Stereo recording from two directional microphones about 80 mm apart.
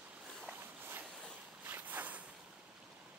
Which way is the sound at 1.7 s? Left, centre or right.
Right.